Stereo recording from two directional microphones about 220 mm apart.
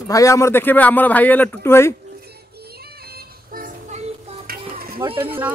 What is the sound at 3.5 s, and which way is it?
Music, 35° right (ahead or behind).